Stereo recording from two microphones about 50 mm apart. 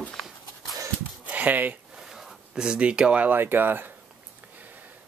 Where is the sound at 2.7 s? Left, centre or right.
Right.